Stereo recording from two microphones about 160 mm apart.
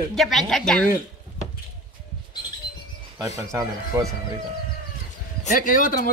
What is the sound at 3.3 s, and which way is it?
Speech, 20° right (ahead or behind).